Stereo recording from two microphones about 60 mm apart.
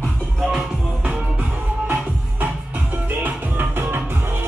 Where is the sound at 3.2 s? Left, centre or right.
Right.